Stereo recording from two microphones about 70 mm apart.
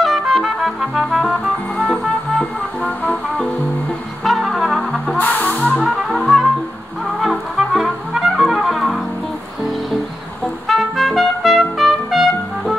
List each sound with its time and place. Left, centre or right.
0.0 s music: centre
4.2 s brass instrument: centre
5.1 s music: left
5.8 s music: centre
7.5 s music: centre
10.7 s music: centre